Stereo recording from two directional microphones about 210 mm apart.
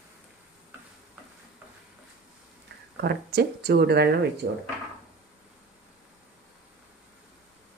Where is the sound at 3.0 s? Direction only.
50° right (ahead or behind).